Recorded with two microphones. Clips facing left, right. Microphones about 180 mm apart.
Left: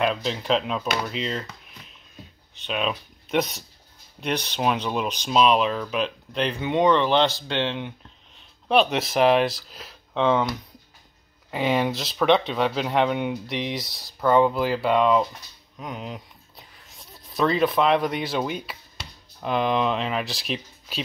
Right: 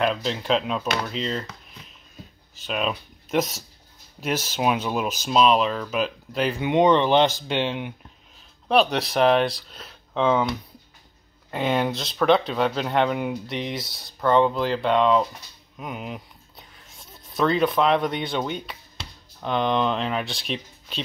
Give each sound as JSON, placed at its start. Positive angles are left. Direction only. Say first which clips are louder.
{"t": 0.0, "sound": "speech", "louder": "even", "side_deg": 0}
{"t": 8.6, "sound": "speech", "louder": "even", "side_deg": 0}